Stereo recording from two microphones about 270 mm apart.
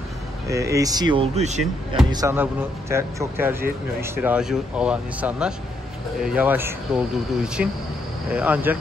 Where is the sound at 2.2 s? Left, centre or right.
Centre.